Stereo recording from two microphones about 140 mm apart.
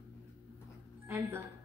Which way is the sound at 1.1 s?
15° right (ahead or behind).